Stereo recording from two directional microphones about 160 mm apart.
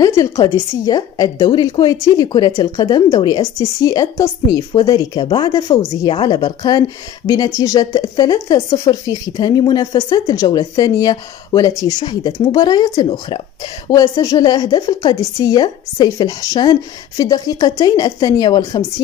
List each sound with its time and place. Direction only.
0.0 s a woman's voice: 20° left (ahead or behind)